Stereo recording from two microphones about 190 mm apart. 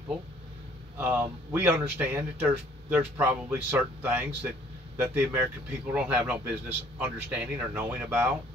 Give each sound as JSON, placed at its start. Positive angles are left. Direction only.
{"t": 0.9, "sound": "speech", "side_deg": -10}